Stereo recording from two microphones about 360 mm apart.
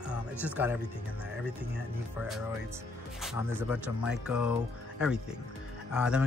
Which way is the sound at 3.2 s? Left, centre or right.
Centre.